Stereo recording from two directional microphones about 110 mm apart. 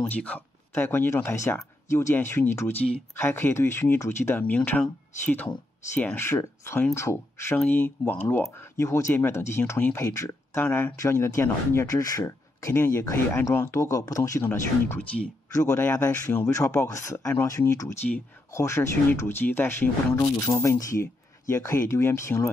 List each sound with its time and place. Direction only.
0.0 s speech: 15° left (ahead or behind)